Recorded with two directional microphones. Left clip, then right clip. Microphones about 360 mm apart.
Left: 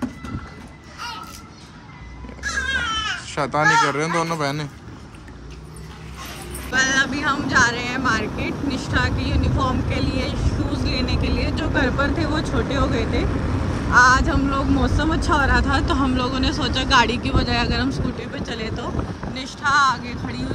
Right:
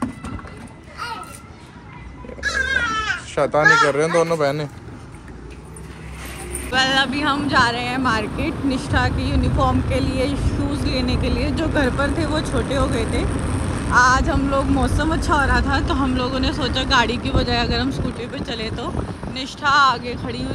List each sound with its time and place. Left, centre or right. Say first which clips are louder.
3.2 s speech: right 3 dB; centre
6.7 s speech: right 1 dB; centre